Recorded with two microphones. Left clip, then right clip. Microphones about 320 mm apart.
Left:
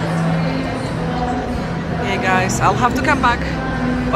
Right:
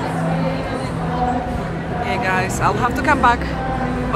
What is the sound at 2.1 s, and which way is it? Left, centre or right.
Speech, centre.